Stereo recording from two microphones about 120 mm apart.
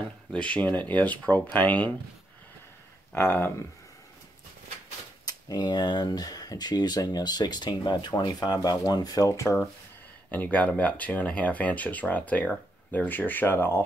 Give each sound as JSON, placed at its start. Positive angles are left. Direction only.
{"t": 0.3, "sound": "speech", "side_deg": 10}
{"t": 3.2, "sound": "speech", "side_deg": 20}
{"t": 5.2, "sound": "speech", "side_deg": 35}
{"t": 10.3, "sound": "speech", "side_deg": 10}